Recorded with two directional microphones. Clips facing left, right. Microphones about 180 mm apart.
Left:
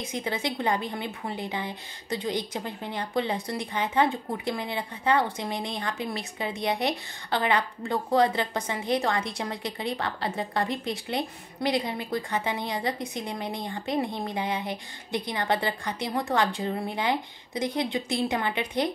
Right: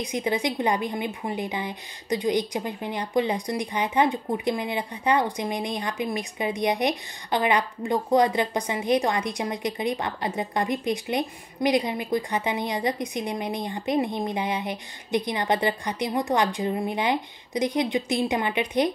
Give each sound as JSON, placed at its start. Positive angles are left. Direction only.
{"t": 0.0, "sound": "a woman's voice", "side_deg": -15}